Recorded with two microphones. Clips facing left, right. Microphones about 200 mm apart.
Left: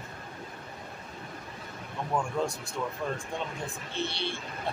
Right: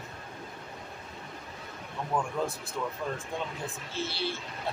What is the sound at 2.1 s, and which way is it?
Speech, 10° left (ahead or behind).